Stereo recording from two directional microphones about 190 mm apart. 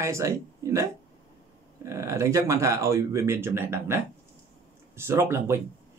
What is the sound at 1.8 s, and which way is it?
Speech, 15° right (ahead or behind).